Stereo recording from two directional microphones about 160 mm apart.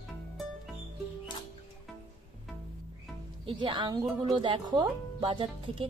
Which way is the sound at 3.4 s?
35° right (ahead or behind).